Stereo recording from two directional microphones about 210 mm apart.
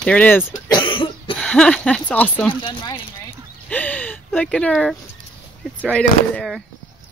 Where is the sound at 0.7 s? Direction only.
20° left (ahead or behind).